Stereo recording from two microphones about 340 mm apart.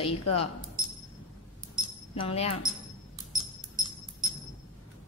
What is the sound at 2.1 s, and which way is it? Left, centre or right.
Speech, centre.